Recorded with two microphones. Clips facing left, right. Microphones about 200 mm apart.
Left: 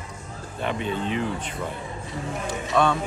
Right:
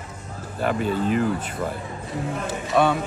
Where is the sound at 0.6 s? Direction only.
5° right (ahead or behind).